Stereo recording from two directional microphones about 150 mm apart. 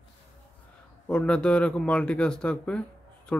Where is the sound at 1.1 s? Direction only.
5° left (ahead or behind).